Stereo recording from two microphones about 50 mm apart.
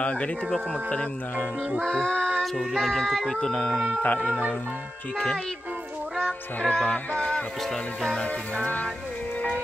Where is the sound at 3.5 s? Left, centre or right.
Left.